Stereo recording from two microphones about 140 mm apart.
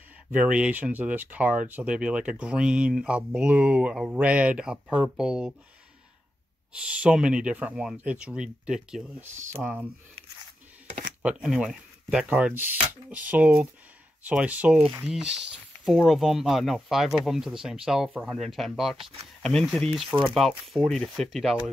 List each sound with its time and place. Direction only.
0.3 s speech: 5° right (ahead or behind)
6.7 s speech: 10° right (ahead or behind)
11.2 s speech: 5° right (ahead or behind)